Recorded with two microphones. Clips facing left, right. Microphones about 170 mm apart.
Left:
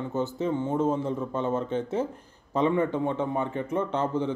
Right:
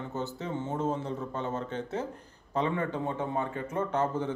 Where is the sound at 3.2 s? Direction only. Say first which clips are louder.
Left 4 dB; 20° left (ahead or behind).